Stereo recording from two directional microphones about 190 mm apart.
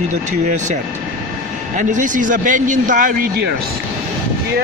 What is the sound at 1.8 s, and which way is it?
A man's voice, 40° right (ahead or behind).